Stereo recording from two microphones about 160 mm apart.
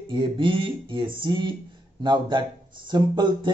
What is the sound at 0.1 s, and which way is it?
A man's voice, 30° right (ahead or behind).